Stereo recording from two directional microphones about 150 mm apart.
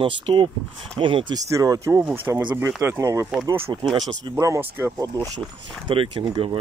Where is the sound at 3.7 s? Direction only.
30° right (ahead or behind).